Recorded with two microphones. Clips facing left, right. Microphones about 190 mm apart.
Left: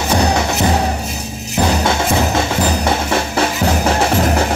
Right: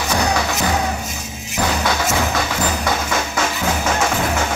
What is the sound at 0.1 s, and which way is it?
Music, 30° left (ahead or behind).